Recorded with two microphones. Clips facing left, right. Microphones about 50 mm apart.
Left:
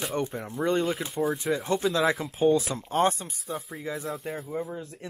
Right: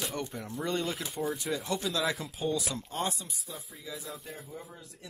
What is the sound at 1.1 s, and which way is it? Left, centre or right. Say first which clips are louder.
Speech: left 6 dB; centre.